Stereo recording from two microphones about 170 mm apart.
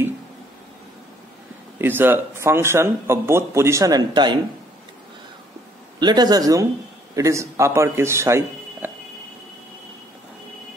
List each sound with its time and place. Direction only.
1.8 s a man's voice: 10° right (ahead or behind)
5.9 s a man's voice: 25° right (ahead or behind)